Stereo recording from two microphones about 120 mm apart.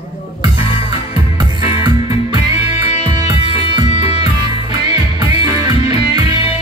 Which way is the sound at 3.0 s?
45° right (ahead or behind).